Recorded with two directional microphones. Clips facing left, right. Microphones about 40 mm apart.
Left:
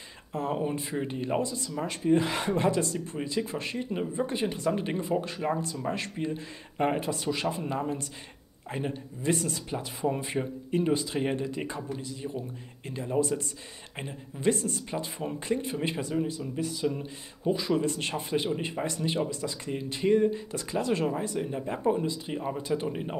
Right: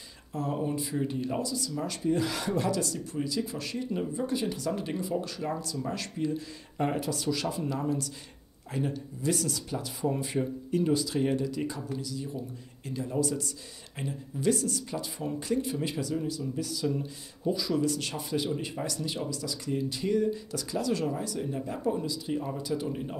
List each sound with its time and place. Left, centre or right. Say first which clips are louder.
0.3 s speech: left 1 dB; left